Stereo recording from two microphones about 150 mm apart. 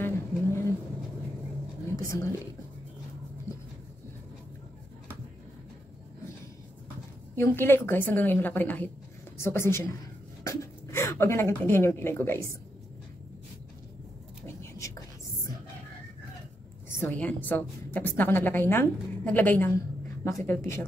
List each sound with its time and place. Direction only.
0.0 s vehicle: 15° left (ahead or behind)
1.9 s a sound: 20° left (ahead or behind)
7.3 s a woman's voice: 15° left (ahead or behind)
14.4 s whispering: 20° left (ahead or behind)
17.0 s a woman's voice: 10° left (ahead or behind)